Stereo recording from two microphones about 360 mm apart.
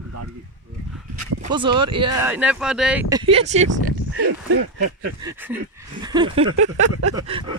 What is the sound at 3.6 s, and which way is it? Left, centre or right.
Speech, right.